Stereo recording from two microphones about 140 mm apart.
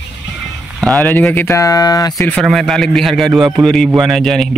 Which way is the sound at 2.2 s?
5° left (ahead or behind).